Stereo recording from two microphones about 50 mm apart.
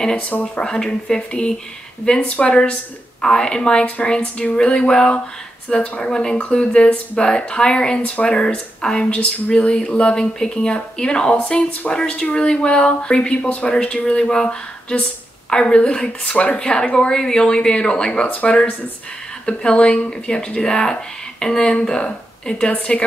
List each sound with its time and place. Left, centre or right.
0.6 s speech: centre
3.2 s speech: centre